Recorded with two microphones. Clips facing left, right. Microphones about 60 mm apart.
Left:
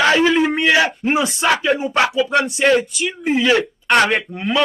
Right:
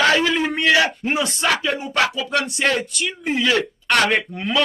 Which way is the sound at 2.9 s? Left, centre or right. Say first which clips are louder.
Left 4 dB; centre.